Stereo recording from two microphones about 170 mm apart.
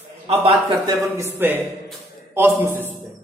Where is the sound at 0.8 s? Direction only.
15° right (ahead or behind).